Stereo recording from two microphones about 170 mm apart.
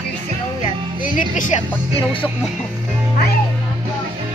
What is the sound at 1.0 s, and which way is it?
Music, 50° left (ahead or behind).